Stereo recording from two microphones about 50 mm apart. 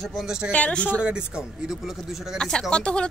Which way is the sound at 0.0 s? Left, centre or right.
Centre.